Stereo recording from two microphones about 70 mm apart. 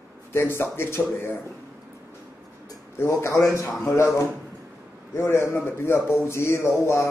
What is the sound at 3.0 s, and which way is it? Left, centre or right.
A man's voice, left.